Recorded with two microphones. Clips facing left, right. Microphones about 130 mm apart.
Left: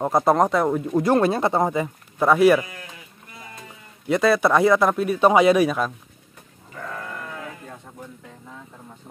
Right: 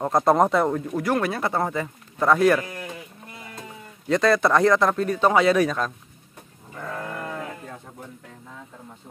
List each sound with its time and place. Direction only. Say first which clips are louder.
0.0 s speech: even; 5° left (ahead or behind)
0.9 s speech: left 5 dB; 25° left (ahead or behind); by 2.6 s 10° left (ahead or behind)
4.1 s speech: left 1 dB; 5° left (ahead or behind)